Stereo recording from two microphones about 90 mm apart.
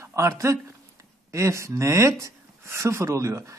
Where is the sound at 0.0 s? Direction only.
35° right (ahead or behind).